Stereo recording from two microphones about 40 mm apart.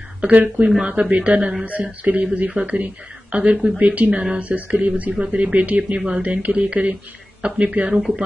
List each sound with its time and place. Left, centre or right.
0.3 s speech: right